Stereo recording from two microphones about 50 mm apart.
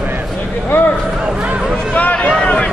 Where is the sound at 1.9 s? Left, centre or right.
Left.